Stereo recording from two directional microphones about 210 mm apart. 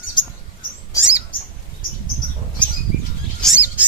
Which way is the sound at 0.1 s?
25° left (ahead or behind).